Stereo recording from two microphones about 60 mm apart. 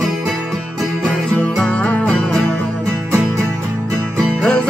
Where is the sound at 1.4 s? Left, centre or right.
Left.